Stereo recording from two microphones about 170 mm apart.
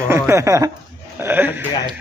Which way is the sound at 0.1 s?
15° right (ahead or behind).